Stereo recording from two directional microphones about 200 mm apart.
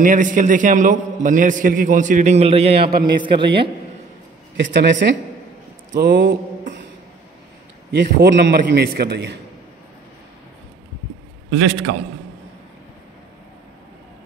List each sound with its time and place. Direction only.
0.0 s a man's voice: 40° right (ahead or behind); by 3.6 s 25° right (ahead or behind)
4.6 s speech: 60° right (ahead or behind)
5.9 s mantra: 55° right (ahead or behind)
8.0 s a man's voice: 50° right (ahead or behind)
11.5 s a man's voice: 90° right